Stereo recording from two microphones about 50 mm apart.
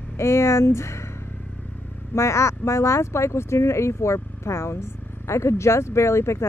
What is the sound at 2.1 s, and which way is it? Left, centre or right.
Speech, left.